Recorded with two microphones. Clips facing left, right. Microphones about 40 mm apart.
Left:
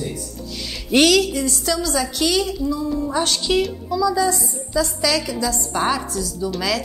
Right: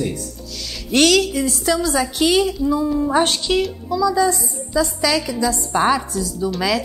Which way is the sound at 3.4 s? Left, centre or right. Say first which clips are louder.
Even; centre.